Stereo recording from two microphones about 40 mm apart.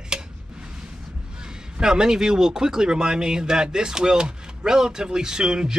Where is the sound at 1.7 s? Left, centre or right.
Centre.